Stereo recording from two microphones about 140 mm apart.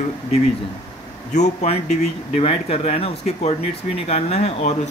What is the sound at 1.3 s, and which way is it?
Speech, 55° left (ahead or behind).